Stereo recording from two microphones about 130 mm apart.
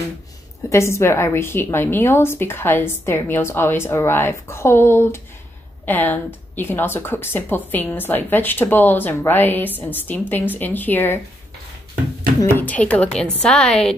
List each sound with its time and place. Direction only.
0.7 s a woman's voice: 20° left (ahead or behind)
12.4 s speech: 15° left (ahead or behind)